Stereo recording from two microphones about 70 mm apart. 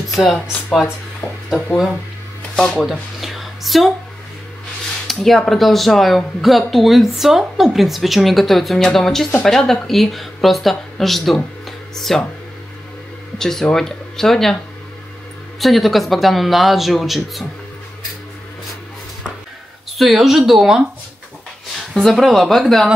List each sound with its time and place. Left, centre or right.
0.1 s speech: centre
1.2 s a sound: left
2.5 s speech: centre
2.9 s a sound: centre
5.0 s speech: centre
13.4 s speech: centre
15.6 s speech: centre
20.0 s speech: centre
21.9 s speech: centre